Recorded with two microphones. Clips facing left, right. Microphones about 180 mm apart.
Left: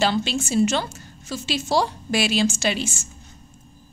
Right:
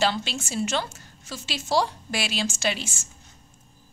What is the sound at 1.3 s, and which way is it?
Speech, 20° left (ahead or behind).